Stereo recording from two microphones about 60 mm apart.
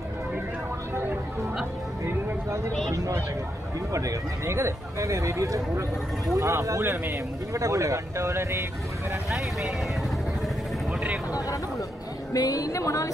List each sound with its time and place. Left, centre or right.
3.9 s speech: right
4.6 s speech: right
6.8 s speech: right
7.5 s speech: right
12.3 s music: left